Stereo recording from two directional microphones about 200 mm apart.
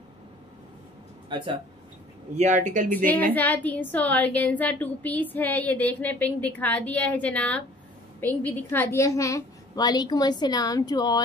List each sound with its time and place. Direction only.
1.3 s speech: 25° right (ahead or behind)
2.3 s speech: 35° right (ahead or behind)
3.3 s a woman's voice: 10° left (ahead or behind)